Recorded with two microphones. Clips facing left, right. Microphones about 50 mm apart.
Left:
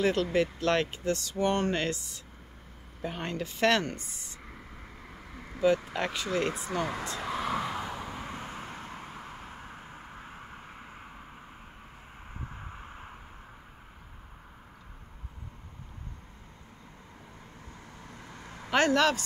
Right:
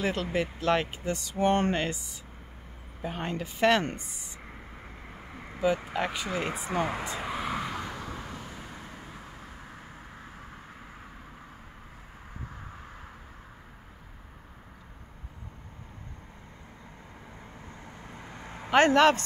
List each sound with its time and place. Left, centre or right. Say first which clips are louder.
0.0 s speech: left 3 dB; centre
1.3 s speech: right 4 dB; right
3.0 s speech: right 1 dB; centre
5.1 s vehicle: right 1 dB; right
5.9 s speech: even; centre
7.1 s vehicle: even; centre
8.3 s vehicle: left 2 dB; left
18.0 s vehicle: right 3 dB; right
18.7 s speech: right 4 dB; right